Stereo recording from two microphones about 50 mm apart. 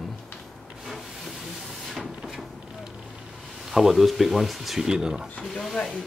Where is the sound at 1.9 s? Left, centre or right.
Centre.